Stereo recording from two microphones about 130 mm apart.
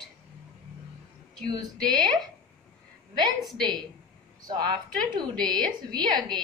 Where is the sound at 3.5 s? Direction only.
35° right (ahead or behind).